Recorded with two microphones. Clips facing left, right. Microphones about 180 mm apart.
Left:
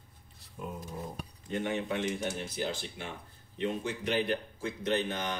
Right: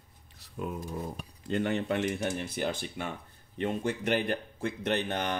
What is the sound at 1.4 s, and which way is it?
Speech, 65° right (ahead or behind).